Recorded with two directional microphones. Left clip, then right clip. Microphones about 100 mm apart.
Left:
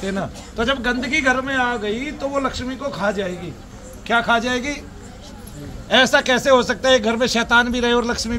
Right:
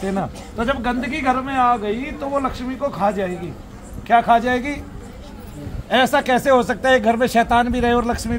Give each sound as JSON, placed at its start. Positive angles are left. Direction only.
{"t": 0.0, "sound": "a man's voice", "side_deg": -30}
{"t": 5.9, "sound": "speech", "side_deg": -30}